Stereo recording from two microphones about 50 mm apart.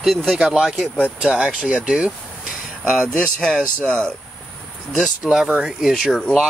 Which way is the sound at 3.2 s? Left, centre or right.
Centre.